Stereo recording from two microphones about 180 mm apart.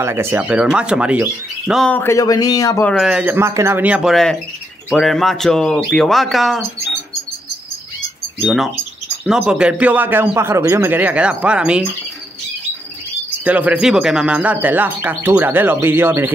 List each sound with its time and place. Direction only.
0.0 s speech: 15° right (ahead or behind)
1.9 s speech: 10° left (ahead or behind)
2.9 s speech: 5° right (ahead or behind)
8.4 s speech: 5° right (ahead or behind)
13.4 s speech: 5° right (ahead or behind)